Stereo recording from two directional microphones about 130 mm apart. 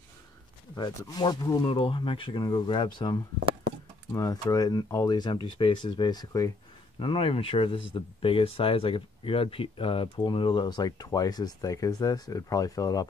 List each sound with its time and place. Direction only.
0.7 s speech: 30° left (ahead or behind)
4.1 s speech: 25° left (ahead or behind)
7.0 s speech: 45° left (ahead or behind); by 13.0 s 25° left (ahead or behind)